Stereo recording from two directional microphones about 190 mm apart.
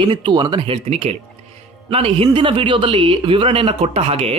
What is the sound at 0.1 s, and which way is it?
Speech, 25° right (ahead or behind).